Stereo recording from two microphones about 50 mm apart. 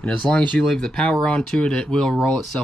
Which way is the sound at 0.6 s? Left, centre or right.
Centre.